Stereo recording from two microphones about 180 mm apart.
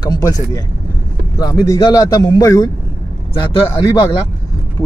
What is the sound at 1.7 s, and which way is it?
A man's voice, 20° left (ahead or behind).